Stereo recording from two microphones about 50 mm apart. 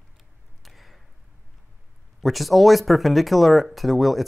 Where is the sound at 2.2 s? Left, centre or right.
Centre.